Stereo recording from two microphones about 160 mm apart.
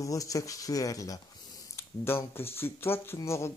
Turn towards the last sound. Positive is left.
turn(degrees=15)  # may be behind; listen again after turning